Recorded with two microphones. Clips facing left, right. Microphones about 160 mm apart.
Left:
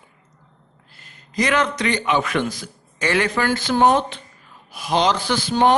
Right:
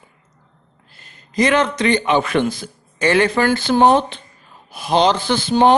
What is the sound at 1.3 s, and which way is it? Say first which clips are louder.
A man's voice: right 4 dB; 25° right (ahead or behind).